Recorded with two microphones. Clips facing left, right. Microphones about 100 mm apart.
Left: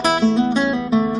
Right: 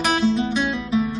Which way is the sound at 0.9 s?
60° left (ahead or behind).